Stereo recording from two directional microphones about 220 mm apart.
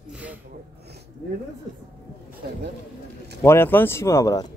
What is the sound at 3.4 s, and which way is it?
Speech, 10° left (ahead or behind).